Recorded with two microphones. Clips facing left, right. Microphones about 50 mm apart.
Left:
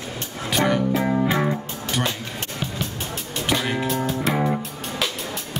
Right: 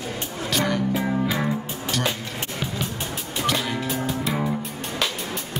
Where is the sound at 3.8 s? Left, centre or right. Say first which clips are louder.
Left 3 dB; centre.